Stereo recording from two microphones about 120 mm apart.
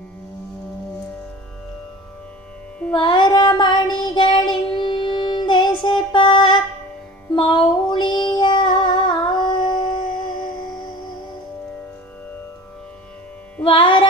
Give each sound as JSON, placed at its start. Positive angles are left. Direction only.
{"t": 2.9, "sound": "child singing", "side_deg": 40}
{"t": 6.1, "sound": "music", "side_deg": 40}
{"t": 7.3, "sound": "female singing", "side_deg": 40}
{"t": 13.7, "sound": "music", "side_deg": 45}